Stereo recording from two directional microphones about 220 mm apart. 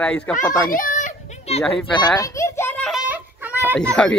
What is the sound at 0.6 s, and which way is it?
Baby cry, 40° left (ahead or behind).